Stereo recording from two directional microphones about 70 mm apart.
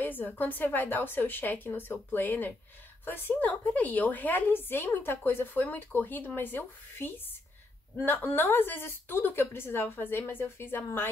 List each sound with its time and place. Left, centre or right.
0.0 s a woman's voice: left